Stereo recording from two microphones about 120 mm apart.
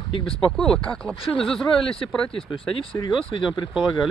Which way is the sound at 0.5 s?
5° left (ahead or behind).